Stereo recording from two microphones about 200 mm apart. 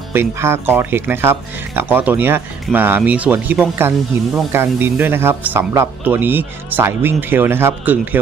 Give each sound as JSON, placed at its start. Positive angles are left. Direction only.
{"t": 0.1, "sound": "speech", "side_deg": -10}